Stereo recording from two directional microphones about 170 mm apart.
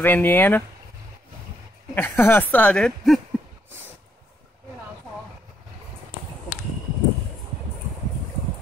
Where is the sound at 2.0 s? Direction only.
10° left (ahead or behind).